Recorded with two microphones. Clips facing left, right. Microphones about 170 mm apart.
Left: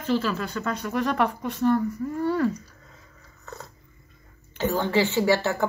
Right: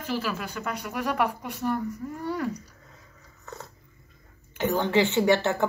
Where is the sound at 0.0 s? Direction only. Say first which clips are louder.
Left 5 dB; 10° right (ahead or behind).